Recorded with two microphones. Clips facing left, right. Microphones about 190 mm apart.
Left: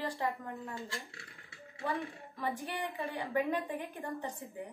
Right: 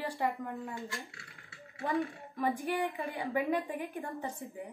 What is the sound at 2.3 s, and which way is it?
A woman's voice, 15° right (ahead or behind).